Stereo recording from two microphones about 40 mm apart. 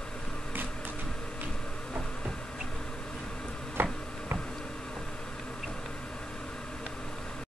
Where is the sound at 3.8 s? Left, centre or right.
Right.